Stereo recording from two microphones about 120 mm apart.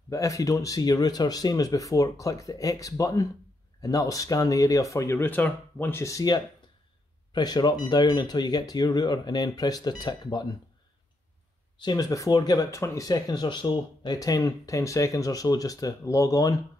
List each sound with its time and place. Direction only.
0.1 s speech: 25° left (ahead or behind)
11.8 s speech: 35° left (ahead or behind)